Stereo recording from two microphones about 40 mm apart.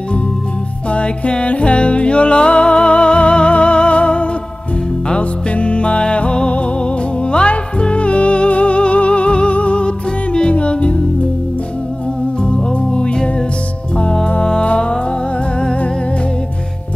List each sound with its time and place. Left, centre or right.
0.8 s music: left
12.4 s music: left
14.4 s music: left